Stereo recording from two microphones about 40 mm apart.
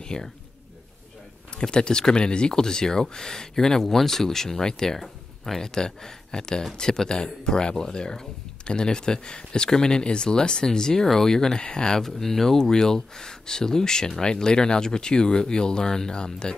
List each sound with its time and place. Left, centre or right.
0.0 s speech: centre
1.5 s speech: left
12.0 s speech: centre; by 16.5 s left